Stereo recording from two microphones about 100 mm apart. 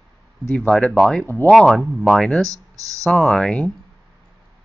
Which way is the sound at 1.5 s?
5° left (ahead or behind).